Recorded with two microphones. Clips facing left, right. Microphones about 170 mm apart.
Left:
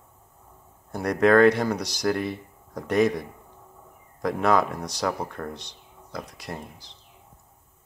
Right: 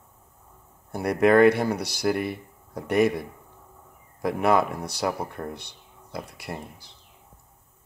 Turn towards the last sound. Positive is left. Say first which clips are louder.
# even
turn(degrees=-5)  # may be behind; listen again after turning